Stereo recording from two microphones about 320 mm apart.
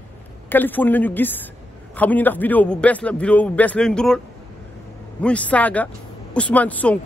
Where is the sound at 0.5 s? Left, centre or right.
Centre.